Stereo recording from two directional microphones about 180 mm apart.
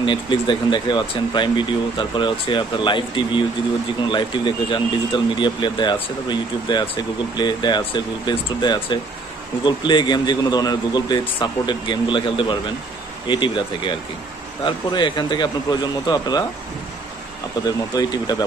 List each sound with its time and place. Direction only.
0.0 s speech: 25° left (ahead or behind)
17.6 s speech: 20° left (ahead or behind)